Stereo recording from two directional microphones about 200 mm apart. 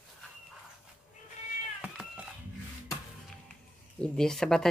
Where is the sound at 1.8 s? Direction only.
5° right (ahead or behind).